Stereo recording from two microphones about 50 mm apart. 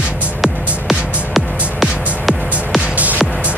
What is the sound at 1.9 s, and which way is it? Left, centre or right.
Music, right.